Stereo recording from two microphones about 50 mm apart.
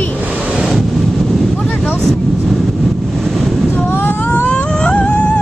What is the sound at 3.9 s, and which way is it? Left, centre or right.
Vehicle, left.